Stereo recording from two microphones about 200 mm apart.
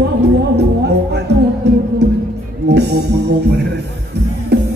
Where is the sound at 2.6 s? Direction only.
55° right (ahead or behind).